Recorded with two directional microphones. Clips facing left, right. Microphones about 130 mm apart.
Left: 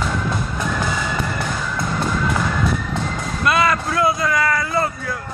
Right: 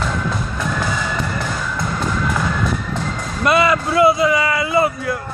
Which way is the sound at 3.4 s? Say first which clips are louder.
Right 3 dB; 15° right (ahead or behind).